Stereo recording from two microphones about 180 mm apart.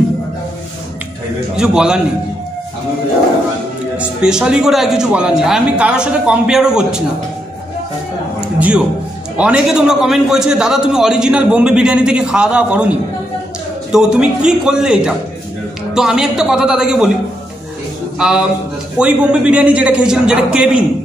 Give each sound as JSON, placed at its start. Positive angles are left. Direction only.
{"t": 1.6, "sound": "a man's voice", "side_deg": -5}
{"t": 4.0, "sound": "a man's voice", "side_deg": -5}
{"t": 8.5, "sound": "a man's voice", "side_deg": -5}
{"t": 13.9, "sound": "a man's voice", "side_deg": -5}
{"t": 18.2, "sound": "a man's voice", "side_deg": -5}